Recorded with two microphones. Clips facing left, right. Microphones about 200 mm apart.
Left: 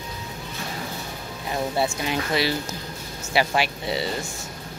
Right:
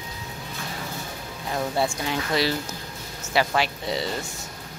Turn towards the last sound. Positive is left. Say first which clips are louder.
# left 1 dB
turn(degrees=5)  # may be behind; listen again after turning